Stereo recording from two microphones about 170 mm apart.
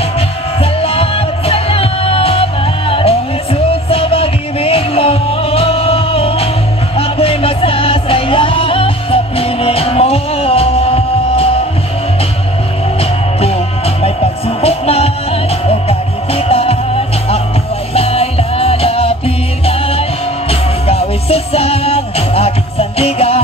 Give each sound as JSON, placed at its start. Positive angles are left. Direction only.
{"t": 0.7, "sound": "music", "side_deg": 35}
{"t": 14.0, "sound": "music", "side_deg": 35}